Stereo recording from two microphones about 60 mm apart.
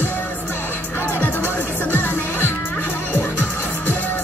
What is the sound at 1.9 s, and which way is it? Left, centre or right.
Music, left.